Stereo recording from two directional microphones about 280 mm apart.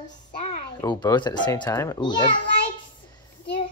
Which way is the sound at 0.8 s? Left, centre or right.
Centre.